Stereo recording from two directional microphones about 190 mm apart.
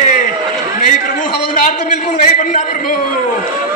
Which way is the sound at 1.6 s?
40° left (ahead or behind).